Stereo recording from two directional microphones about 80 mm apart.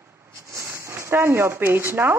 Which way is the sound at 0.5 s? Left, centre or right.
Right.